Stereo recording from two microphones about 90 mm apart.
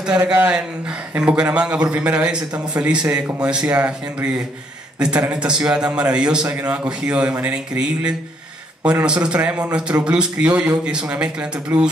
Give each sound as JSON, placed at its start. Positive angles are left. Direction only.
{"t": 0.2, "sound": "a man's voice", "side_deg": -20}